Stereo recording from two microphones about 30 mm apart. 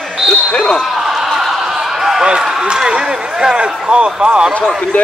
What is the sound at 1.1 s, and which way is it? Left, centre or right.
Snicker, centre.